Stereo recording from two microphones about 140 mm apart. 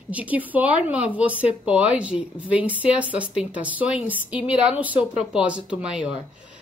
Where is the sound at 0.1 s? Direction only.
10° right (ahead or behind).